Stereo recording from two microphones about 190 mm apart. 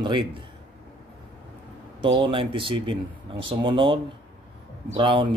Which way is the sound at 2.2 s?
25° right (ahead or behind).